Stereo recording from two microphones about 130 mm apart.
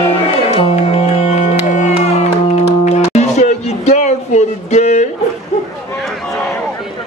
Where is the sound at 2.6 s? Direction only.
60° left (ahead or behind).